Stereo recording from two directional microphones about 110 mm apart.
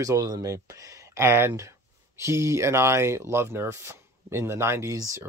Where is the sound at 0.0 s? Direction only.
30° right (ahead or behind).